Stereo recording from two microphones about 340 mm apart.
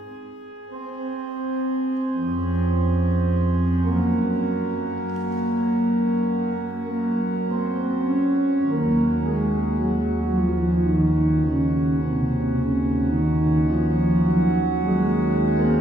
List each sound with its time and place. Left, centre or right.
8.5 s music: right